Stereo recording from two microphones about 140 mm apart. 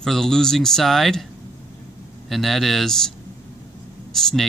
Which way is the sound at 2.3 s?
Centre (ahead or behind).